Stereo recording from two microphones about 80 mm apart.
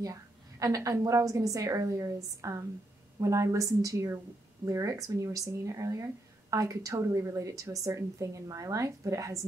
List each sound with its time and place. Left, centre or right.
0.0 s a woman's voice: right